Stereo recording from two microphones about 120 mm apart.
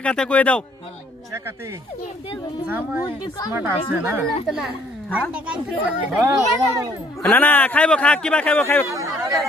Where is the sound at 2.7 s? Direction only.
15° right (ahead or behind).